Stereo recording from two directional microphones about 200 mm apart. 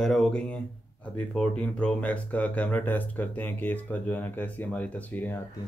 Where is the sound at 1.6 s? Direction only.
5° left (ahead or behind).